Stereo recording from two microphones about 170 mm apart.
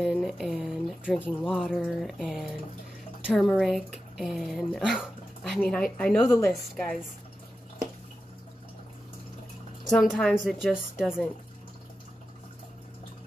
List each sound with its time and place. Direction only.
0.0 s speech: centre (ahead or behind)
6.2 s a woman's voice: 15° left (ahead or behind)
9.8 s speech: 5° left (ahead or behind)